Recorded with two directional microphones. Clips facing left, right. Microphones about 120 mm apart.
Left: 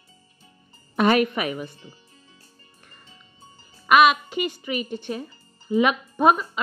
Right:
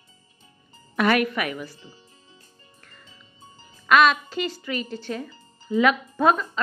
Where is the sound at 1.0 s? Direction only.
25° left (ahead or behind).